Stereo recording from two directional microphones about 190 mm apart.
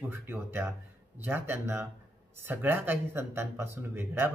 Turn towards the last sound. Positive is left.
turn(degrees=-10)  # may be behind; listen again after turning